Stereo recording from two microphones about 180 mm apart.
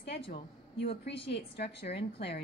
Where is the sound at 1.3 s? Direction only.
65° left (ahead or behind).